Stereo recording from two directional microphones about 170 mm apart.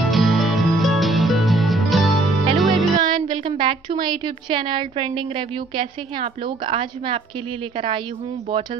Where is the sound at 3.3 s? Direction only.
30° right (ahead or behind).